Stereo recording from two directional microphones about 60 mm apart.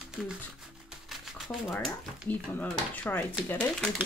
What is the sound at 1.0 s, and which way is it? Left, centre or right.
Shuffling cards, centre.